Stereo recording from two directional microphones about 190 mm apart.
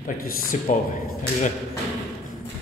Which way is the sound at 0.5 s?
40° left (ahead or behind).